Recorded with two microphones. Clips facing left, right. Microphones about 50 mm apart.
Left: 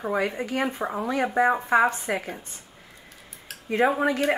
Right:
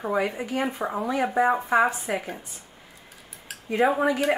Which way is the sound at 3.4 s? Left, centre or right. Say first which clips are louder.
Even; centre.